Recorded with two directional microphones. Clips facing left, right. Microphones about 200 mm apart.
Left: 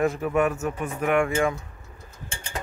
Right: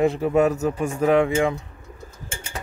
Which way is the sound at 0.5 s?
40° right (ahead or behind).